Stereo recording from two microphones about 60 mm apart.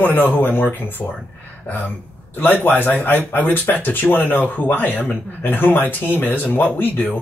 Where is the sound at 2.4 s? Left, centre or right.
Left.